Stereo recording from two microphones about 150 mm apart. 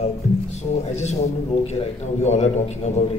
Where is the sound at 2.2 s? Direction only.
50° left (ahead or behind).